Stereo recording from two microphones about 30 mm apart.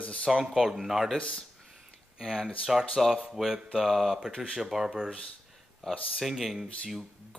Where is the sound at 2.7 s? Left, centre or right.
Centre.